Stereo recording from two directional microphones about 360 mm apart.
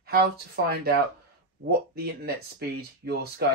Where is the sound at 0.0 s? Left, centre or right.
Right.